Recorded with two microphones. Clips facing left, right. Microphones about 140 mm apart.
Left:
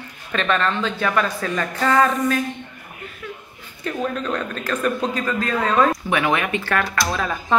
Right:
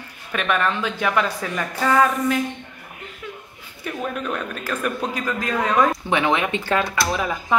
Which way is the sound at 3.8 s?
10° right (ahead or behind).